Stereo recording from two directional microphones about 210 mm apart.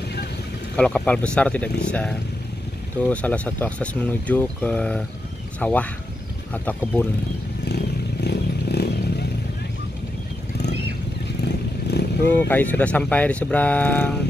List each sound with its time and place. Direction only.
0.7 s speech: 5° left (ahead or behind)
7.6 s motorcycle: 50° left (ahead or behind)
11.4 s vehicle: 50° left (ahead or behind)
12.3 s speech: 10° left (ahead or behind)